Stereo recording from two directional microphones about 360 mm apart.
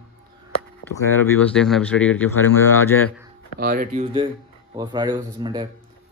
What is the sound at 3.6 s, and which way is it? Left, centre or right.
Speech, right.